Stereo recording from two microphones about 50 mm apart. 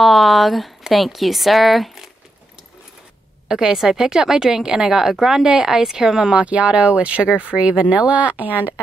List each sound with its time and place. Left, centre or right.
0.0 s speech: centre
3.4 s speech: centre
6.3 s speech: right